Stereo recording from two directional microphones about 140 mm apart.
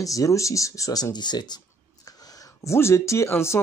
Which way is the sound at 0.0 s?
25° left (ahead or behind).